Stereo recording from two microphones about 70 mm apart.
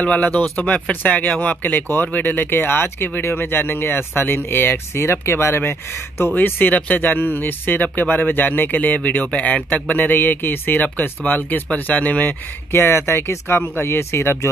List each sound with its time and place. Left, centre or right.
0.0 s speech: centre; by 6.3 s left
6.3 s speech: left
12.7 s speech: left